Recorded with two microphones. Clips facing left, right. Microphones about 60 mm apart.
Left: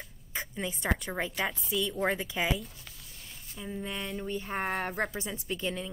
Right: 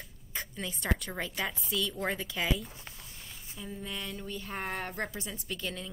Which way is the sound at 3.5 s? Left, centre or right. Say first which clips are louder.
Left 3 dB; left.